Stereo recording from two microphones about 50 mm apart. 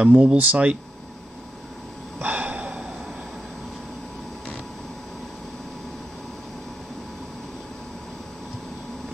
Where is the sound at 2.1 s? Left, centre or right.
Right.